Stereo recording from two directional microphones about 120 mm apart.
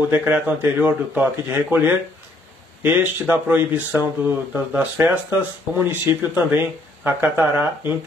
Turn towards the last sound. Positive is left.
turn(degrees=-20)  # may be behind; listen again after turning